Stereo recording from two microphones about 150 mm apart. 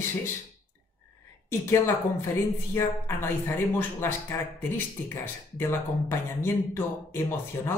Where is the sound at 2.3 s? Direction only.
15° left (ahead or behind).